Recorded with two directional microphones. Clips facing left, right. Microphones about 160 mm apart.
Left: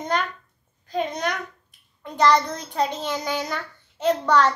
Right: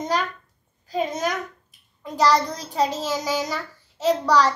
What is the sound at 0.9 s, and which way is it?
A child's voice, 5° right (ahead or behind).